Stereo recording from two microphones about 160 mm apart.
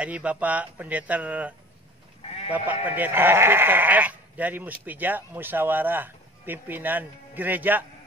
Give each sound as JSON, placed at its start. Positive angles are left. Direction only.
{"t": 0.0, "sound": "speech", "side_deg": -10}
{"t": 2.2, "sound": "sheep", "side_deg": 40}
{"t": 2.5, "sound": "speech", "side_deg": -10}